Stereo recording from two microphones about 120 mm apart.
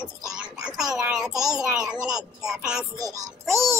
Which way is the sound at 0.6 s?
5° right (ahead or behind).